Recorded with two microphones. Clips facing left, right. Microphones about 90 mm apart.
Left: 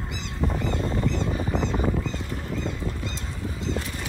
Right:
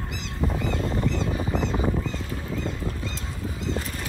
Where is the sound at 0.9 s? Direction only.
Centre (ahead or behind).